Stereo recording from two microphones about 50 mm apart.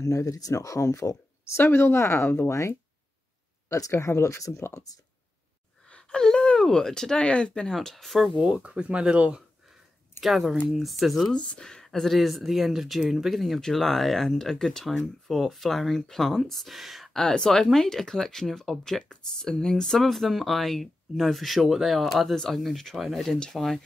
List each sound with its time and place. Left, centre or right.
0.0 s speech: left
1.6 s speech: left
3.6 s speech: left
5.9 s gasp: centre
6.6 s speech: centre
7.2 s speech: left
7.7 s speech: centre
8.4 s speech: right
10.2 s speech: centre
11.6 s speech: centre
13.6 s speech: centre